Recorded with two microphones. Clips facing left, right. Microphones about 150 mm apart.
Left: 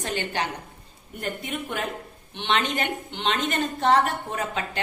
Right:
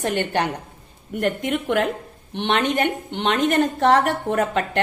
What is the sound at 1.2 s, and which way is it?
Speech, 75° right (ahead or behind).